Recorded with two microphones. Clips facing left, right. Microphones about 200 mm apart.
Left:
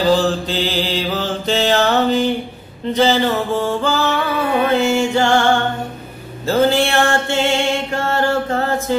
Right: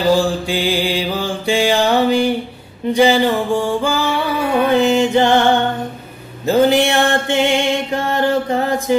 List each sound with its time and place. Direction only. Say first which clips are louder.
0.1 s music: right 1 dB; 10° right (ahead or behind)
6.4 s mantra: right 2 dB; 15° right (ahead or behind)